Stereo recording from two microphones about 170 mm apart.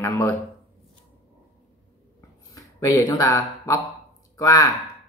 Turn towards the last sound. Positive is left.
turn(degrees=20)  # may be behind; listen again after turning